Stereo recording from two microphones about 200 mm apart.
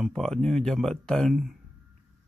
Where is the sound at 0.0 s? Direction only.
Centre (ahead or behind).